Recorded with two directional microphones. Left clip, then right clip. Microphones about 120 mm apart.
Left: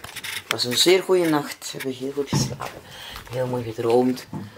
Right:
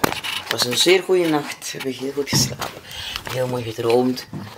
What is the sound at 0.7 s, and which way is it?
Speech, 15° left (ahead or behind).